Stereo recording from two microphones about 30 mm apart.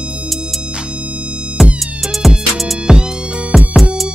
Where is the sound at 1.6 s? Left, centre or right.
Centre.